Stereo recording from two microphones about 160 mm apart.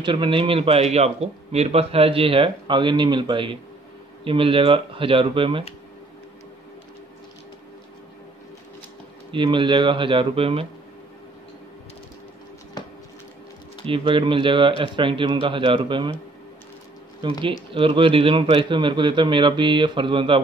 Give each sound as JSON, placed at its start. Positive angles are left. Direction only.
{"t": 0.0, "sound": "speech", "side_deg": -30}
{"t": 9.3, "sound": "speech", "side_deg": -30}
{"t": 13.8, "sound": "speech", "side_deg": -35}
{"t": 17.2, "sound": "speech", "side_deg": -30}